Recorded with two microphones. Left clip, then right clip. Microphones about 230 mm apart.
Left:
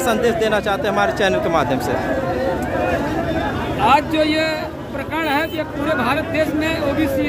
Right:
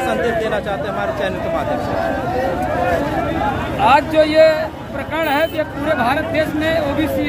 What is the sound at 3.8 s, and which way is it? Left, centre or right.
Speech, centre.